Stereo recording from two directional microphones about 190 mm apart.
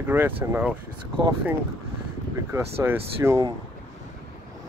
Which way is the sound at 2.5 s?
15° right (ahead or behind).